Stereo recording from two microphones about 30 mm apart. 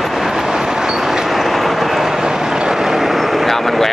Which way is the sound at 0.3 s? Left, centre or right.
Centre.